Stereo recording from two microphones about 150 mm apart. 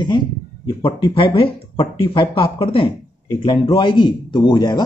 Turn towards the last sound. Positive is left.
turn(degrees=30)  # may be behind; listen again after turning